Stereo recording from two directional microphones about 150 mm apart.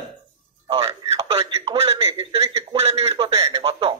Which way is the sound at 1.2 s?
40° right (ahead or behind).